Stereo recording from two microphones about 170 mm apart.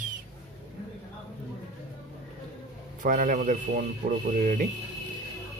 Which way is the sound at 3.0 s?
50° right (ahead or behind).